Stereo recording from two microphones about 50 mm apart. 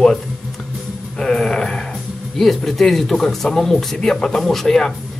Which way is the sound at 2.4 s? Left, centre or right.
Centre.